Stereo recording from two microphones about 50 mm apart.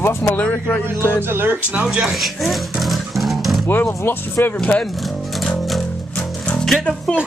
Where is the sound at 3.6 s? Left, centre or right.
Left.